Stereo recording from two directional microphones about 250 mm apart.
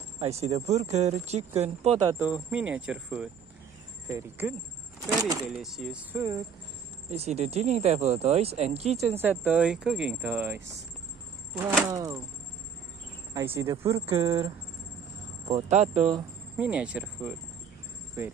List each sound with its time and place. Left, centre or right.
0.2 s speech: right
2.1 s speech: centre
5.6 s speech: centre
7.1 s speech: right
9.2 s speech: centre
13.3 s speech: centre
15.4 s speech: right
16.5 s speech: centre